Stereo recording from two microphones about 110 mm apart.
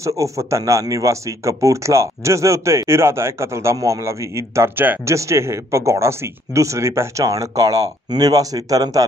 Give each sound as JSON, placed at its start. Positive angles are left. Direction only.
{"t": 0.0, "sound": "a man's voice", "side_deg": -30}